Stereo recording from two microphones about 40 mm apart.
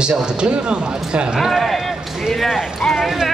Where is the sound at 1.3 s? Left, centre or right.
Centre.